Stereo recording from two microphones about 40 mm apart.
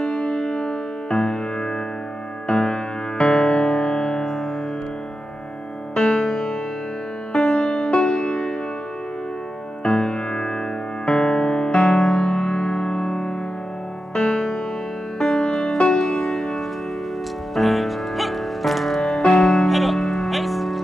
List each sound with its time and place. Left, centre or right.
0.0 s music: left
5.9 s music: centre
9.8 s music: left; by 20.8 s centre